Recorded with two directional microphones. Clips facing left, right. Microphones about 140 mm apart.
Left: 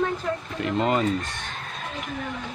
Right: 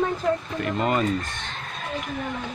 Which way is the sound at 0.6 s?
20° left (ahead or behind).